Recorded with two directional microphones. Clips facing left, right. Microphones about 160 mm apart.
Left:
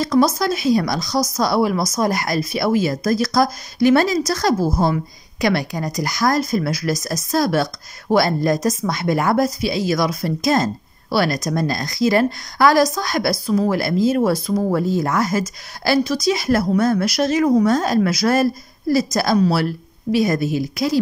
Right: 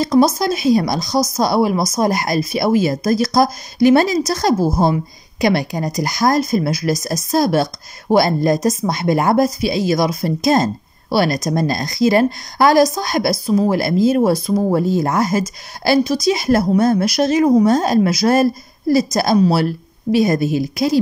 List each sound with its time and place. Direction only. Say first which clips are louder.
0.2 s a woman's voice: right 2 dB; 20° right (ahead or behind)